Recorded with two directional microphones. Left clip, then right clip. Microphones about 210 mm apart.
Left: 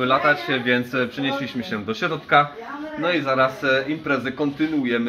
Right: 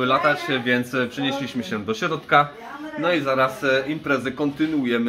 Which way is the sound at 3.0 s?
15° right (ahead or behind).